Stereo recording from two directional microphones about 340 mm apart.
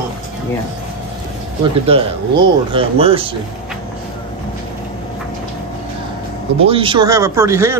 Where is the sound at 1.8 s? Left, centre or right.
Centre.